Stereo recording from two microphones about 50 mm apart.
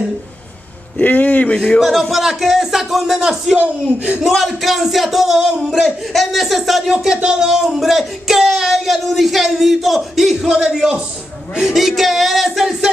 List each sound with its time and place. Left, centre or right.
0.9 s a man's voice: left
1.8 s speech: centre
3.5 s speech: right
4.2 s speech: centre